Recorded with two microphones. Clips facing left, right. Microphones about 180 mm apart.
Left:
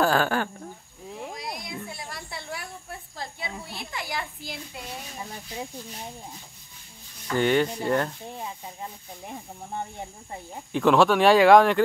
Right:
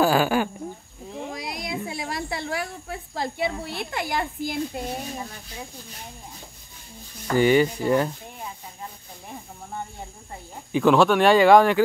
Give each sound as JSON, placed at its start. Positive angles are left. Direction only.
{"t": 0.0, "sound": "speech", "side_deg": -5}
{"t": 1.3, "sound": "a sound", "side_deg": -90}
{"t": 1.9, "sound": "a woman's voice", "side_deg": -90}
{"t": 7.3, "sound": "speech", "side_deg": -5}
{"t": 10.7, "sound": "speech", "side_deg": 0}